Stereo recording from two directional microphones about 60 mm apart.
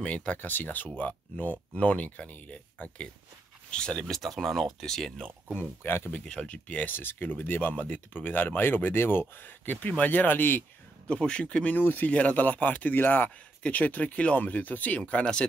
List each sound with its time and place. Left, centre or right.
0.0 s speech: left
4.2 s speech: centre
5.6 s speech: left
6.0 s speech: centre
6.9 s speech: left
11.1 s speech: centre
15.0 s speech: centre